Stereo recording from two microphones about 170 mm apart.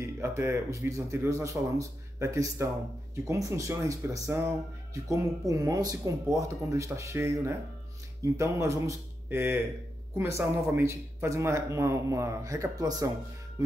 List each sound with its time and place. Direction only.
0.0 s speech: 15° right (ahead or behind)